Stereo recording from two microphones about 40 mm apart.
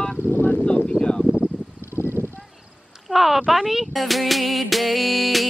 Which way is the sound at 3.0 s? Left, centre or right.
Centre.